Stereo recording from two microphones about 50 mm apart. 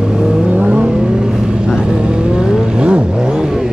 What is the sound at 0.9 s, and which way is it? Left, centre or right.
Vehicle, centre.